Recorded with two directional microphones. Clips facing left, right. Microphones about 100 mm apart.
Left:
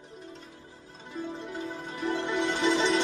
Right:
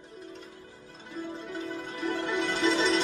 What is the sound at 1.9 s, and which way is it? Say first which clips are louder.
Music: left 1 dB; 20° left (ahead or behind).